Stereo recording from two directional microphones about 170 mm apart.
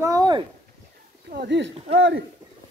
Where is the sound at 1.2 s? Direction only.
90° right.